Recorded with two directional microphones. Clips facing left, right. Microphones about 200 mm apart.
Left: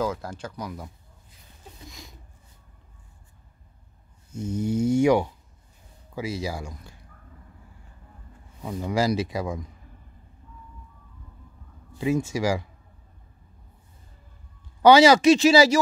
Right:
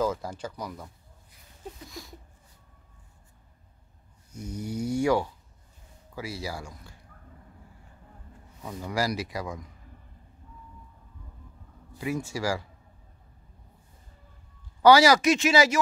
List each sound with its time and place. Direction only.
0.0 s speech: 5° right (ahead or behind)
1.9 s a sound: 20° left (ahead or behind)
4.3 s speech: 25° left (ahead or behind)
8.6 s speech: 20° left (ahead or behind)
11.9 s speech: 25° left (ahead or behind)
14.8 s speech: 20° left (ahead or behind)